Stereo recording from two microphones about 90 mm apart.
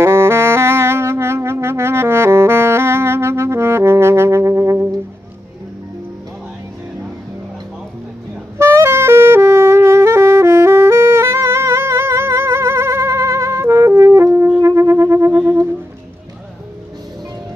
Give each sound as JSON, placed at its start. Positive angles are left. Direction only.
{"t": 0.0, "sound": "saxophone", "side_deg": -30}
{"t": 8.5, "sound": "saxophone", "side_deg": -30}
{"t": 14.6, "sound": "music", "side_deg": -35}